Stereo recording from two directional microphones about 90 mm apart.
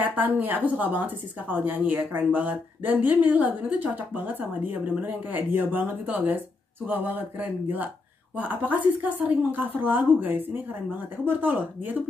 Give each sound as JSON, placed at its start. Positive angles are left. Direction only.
{"t": 0.0, "sound": "a woman's voice", "side_deg": -20}